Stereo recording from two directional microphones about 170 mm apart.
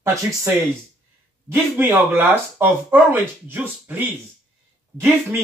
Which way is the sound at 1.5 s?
10° right (ahead or behind).